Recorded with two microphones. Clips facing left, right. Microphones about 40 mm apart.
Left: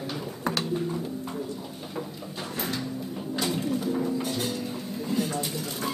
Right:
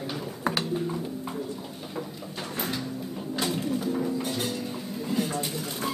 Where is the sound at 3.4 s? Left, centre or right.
Centre.